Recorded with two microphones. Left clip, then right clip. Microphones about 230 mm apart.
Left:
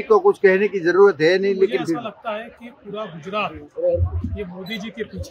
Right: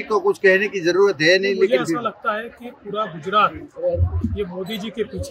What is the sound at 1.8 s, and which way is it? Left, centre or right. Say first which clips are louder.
A man's voice: right 3 dB; centre.